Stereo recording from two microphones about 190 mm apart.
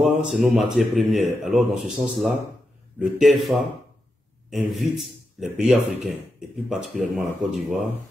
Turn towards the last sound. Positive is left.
turn(degrees=0)  # may be behind; listen again after turning